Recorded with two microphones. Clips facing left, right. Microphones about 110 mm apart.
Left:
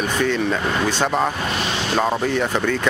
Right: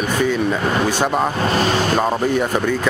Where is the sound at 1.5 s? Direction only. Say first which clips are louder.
Right 6 dB; 45° right (ahead or behind).